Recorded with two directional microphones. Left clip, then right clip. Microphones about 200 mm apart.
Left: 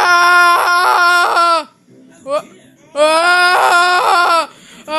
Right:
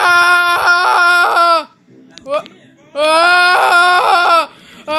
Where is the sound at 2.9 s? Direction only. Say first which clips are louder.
Left 1 dB; 20° left (ahead or behind).